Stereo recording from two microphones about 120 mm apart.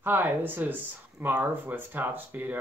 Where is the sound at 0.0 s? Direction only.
15° right (ahead or behind).